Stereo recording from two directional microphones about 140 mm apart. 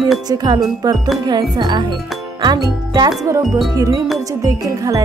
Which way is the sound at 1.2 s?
30° right (ahead or behind).